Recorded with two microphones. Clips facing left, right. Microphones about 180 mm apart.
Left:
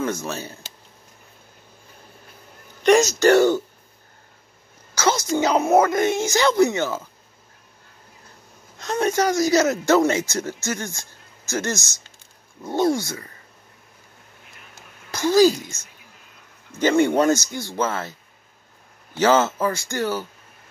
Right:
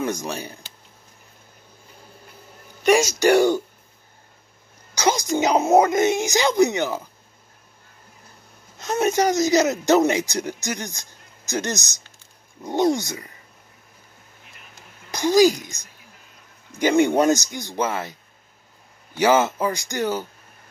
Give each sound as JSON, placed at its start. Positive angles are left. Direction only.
{"t": 0.0, "sound": "speech", "side_deg": -15}
{"t": 2.8, "sound": "speech", "side_deg": -10}
{"t": 4.9, "sound": "speech", "side_deg": -15}
{"t": 9.0, "sound": "speech", "side_deg": -20}
{"t": 15.0, "sound": "speech", "side_deg": -15}
{"t": 19.1, "sound": "speech", "side_deg": -10}